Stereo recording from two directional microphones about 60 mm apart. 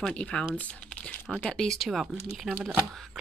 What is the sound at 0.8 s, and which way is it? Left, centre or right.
Computer keyboard, centre.